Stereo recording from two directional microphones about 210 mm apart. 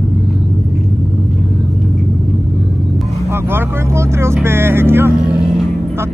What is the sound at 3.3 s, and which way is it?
Vehicle, 10° right (ahead or behind).